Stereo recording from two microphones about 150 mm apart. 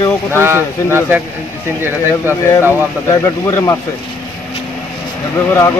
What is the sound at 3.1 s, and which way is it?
Speech, 25° left (ahead or behind).